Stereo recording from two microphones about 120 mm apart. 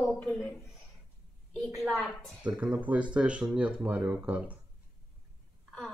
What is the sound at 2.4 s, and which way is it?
Speech, 10° right (ahead or behind).